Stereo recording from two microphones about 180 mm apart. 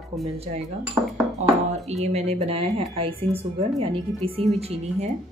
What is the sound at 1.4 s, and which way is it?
Speech, 40° right (ahead or behind).